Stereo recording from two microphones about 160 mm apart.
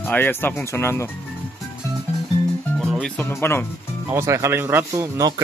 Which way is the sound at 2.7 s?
5° left (ahead or behind).